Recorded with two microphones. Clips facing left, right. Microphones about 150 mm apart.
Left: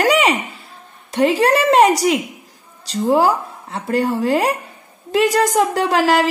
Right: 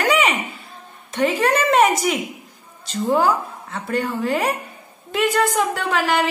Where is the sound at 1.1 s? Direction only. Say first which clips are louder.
Left 4 dB; 35° left (ahead or behind).